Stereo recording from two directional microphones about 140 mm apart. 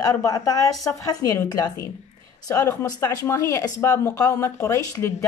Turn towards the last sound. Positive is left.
turn(degrees=20)  # may be behind; listen again after turning